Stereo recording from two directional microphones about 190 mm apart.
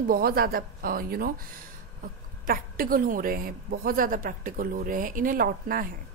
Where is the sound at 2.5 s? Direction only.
50° right (ahead or behind).